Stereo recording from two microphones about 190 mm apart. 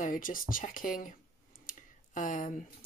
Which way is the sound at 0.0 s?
45° left (ahead or behind).